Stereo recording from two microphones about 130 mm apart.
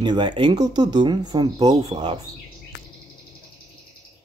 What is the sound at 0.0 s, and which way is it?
Speech, 35° right (ahead or behind).